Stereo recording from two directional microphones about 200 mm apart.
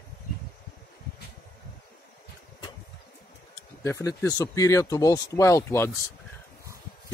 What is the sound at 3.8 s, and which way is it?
Speech, 15° left (ahead or behind).